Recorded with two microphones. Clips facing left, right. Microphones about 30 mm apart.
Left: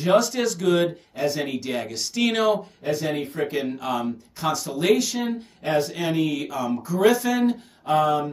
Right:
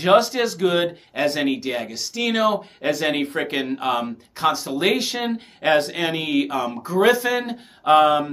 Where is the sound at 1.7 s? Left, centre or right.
Centre.